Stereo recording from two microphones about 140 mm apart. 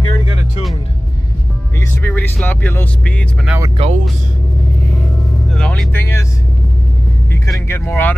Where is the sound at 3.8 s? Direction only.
40° right (ahead or behind).